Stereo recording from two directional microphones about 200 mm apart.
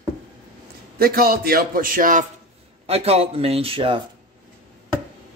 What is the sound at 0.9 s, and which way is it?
A man's voice, 50° right (ahead or behind).